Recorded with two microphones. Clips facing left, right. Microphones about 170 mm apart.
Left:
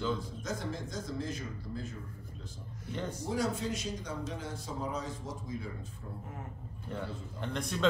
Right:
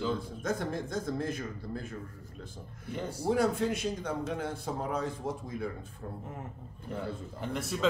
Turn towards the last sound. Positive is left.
turn(degrees=-5)  # may be behind; listen again after turning